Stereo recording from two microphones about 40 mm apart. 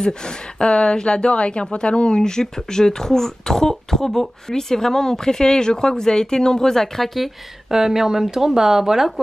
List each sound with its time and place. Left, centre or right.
0.0 s a woman's voice: left
7.7 s speech: centre